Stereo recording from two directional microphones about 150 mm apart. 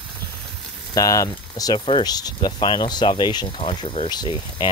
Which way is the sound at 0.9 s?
20° left (ahead or behind).